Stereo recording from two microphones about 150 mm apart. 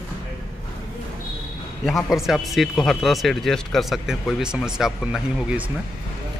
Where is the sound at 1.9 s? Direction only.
Centre (ahead or behind).